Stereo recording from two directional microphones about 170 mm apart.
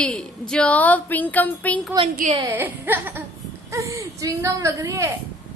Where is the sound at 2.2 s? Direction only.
55° right (ahead or behind).